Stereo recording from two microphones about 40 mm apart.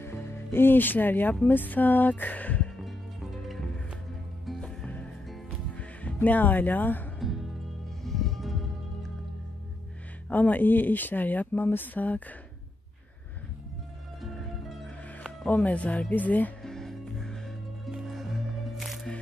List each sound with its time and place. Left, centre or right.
0.0 s speech: left
4.6 s music: left
5.8 s music: left
6.2 s speech: left
8.0 s music: centre
10.3 s speech: left
14.2 s music: centre
15.4 s speech: left
16.1 s speech: left
16.6 s music: centre
18.0 s music: centre